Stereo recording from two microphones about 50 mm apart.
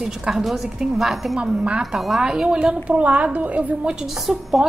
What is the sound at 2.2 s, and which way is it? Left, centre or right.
A woman's voice, centre.